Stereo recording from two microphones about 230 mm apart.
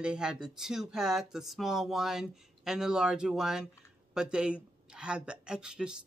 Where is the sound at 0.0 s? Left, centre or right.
Centre.